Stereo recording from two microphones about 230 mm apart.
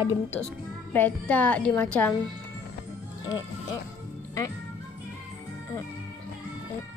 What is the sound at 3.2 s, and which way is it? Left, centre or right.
Speech, centre.